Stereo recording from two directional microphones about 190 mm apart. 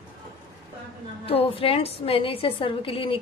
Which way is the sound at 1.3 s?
30° left (ahead or behind).